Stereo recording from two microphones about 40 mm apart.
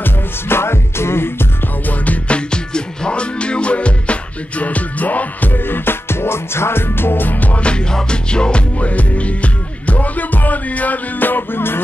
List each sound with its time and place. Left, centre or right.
0.0 s music: left
2.2 s music: left
5.5 s music: left
7.5 s music: left
8.7 s music: left